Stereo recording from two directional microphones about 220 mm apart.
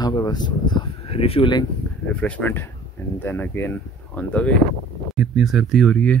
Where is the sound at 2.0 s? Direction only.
5° left (ahead or behind).